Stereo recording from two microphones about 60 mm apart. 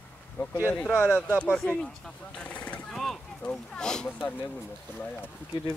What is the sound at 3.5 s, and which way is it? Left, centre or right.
Speech, centre.